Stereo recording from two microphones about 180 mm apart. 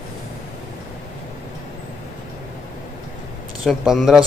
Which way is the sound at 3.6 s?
Centre (ahead or behind).